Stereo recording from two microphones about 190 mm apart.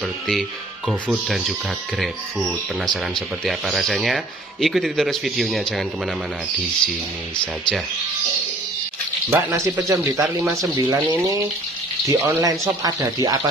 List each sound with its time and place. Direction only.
0.3 s speech: 5° right (ahead or behind)
9.3 s speech: 15° right (ahead or behind)
12.1 s speech: 15° right (ahead or behind)